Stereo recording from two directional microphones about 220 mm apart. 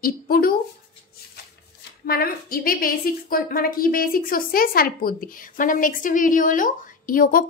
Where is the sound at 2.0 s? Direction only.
45° left (ahead or behind).